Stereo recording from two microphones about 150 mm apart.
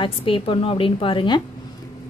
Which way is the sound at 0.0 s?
35° left (ahead or behind).